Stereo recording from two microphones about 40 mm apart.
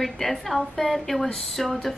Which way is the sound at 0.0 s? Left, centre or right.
Centre.